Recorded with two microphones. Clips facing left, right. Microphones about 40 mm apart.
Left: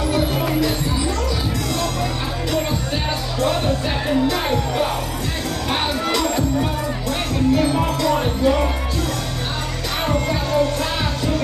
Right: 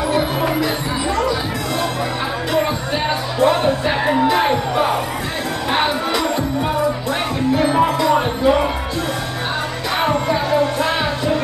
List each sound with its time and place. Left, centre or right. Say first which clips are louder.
0.1 s music: right 1 dB; centre
3.3 s speech: right 5 dB; centre
5.7 s music: right 3 dB; centre
7.5 s music: right 3 dB; centre
10.0 s music: right 3 dB; centre